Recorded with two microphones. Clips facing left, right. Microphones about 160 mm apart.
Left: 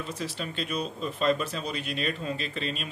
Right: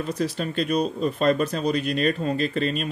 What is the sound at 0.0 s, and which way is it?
Speech, 45° right (ahead or behind).